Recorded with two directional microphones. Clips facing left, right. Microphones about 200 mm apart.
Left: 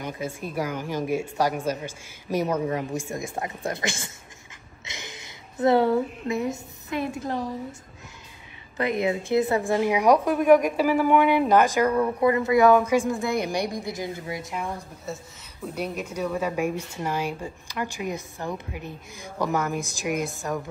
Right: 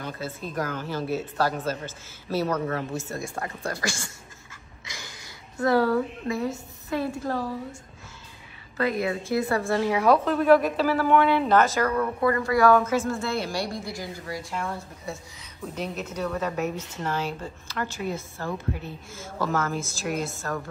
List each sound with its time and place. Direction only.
0.0 s a woman's voice: 15° left (ahead or behind)
4.8 s a sound: 20° left (ahead or behind)
8.7 s a woman's voice: 20° left (ahead or behind)
15.1 s a woman's voice: centre (ahead or behind)